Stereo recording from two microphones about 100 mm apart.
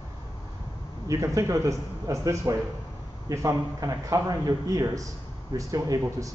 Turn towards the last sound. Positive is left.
turn(degrees=-35)  # may be behind; listen again after turning